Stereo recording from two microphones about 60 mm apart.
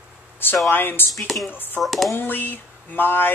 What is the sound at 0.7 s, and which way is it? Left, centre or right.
Speech, left.